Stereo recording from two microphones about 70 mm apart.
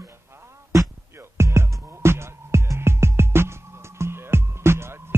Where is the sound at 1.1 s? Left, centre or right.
Right.